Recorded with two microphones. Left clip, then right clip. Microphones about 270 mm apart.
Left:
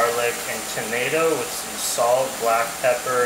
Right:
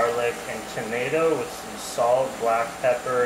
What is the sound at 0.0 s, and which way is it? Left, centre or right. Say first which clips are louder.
Speech: left 2 dB; centre.